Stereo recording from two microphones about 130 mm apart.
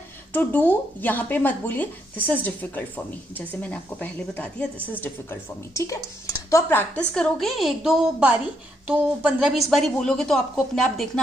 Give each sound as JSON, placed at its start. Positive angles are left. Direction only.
{"t": 0.3, "sound": "a woman's voice", "side_deg": 15}
{"t": 7.2, "sound": "a woman's voice", "side_deg": 0}